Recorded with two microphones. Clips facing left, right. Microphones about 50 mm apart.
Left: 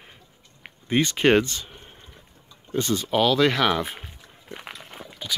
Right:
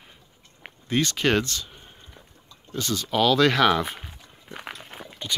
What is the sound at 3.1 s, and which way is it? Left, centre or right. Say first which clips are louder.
Speech: right 1 dB; centre.